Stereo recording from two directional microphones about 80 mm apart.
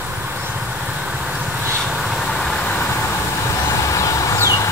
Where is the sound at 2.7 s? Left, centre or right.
Left.